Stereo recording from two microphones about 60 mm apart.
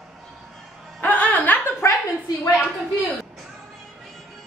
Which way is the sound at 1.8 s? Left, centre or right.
Left.